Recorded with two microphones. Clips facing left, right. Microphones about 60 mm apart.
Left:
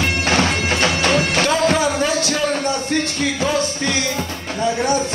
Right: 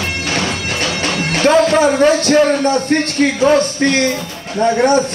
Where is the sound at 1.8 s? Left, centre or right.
Right.